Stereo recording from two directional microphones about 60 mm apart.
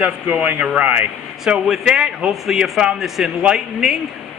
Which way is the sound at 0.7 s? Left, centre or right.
Right.